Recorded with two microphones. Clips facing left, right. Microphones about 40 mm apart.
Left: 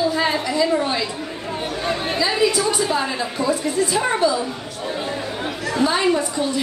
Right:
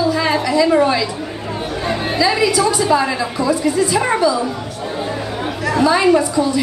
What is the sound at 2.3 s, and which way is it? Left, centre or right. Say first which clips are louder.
Speech: right 4 dB; right.